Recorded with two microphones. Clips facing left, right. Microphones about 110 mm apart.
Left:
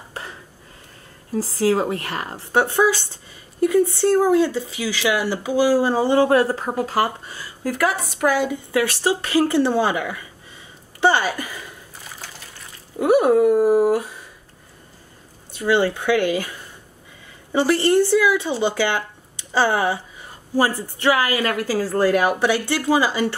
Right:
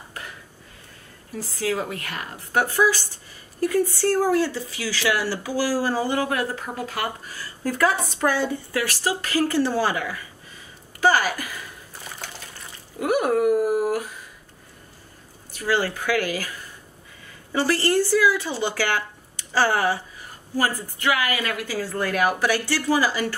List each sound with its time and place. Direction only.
0.1 s a sound: 30° left (ahead or behind)
1.3 s speech: 30° left (ahead or behind)
7.3 s a sound: 15° left (ahead or behind)
8.3 s a woman's voice: 15° left (ahead or behind)
8.7 s speech: 25° left (ahead or behind)
13.0 s speech: 30° left (ahead or behind)
15.5 s speech: 25° left (ahead or behind)